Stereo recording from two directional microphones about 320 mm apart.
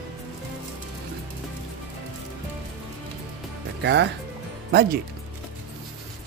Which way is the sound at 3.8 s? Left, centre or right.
Right.